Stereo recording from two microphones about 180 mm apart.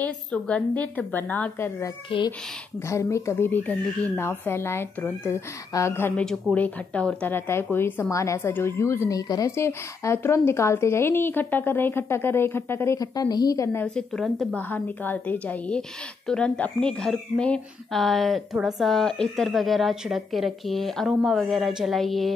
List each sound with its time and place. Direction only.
0.0 s a woman's voice: 5° left (ahead or behind)
2.0 s a child's voice: 25° left (ahead or behind)
2.9 s a woman's voice: 15° left (ahead or behind)
13.9 s a woman's voice: centre (ahead or behind)